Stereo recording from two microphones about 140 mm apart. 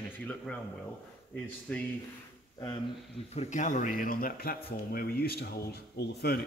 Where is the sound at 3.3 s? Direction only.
55° left (ahead or behind); by 5.5 s 90° left.